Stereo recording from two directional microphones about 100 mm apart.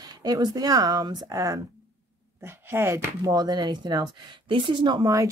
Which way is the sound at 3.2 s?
40° right (ahead or behind).